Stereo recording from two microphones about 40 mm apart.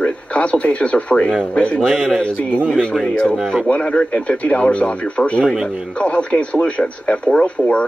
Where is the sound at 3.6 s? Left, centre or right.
Left.